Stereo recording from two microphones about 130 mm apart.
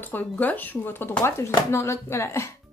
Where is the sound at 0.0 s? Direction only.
15° left (ahead or behind).